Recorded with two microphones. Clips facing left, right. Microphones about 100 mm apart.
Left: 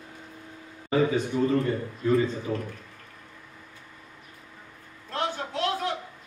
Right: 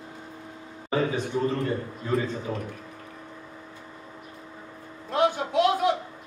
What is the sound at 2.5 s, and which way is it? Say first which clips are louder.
Speech: left 1 dB; 30° right (ahead or behind).